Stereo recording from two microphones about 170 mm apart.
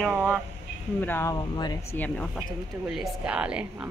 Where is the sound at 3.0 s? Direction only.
5° right (ahead or behind).